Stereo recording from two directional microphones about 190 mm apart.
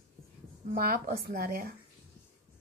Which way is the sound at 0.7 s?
50° right (ahead or behind).